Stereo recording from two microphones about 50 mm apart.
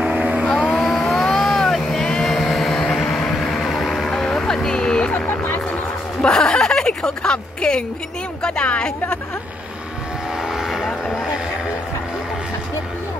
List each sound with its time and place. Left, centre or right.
0.0 s vehicle: right
0.5 s vehicle: centre
5.1 s vehicle: left
6.2 s a sound: centre
8.4 s speech: left
10.4 s vehicle: centre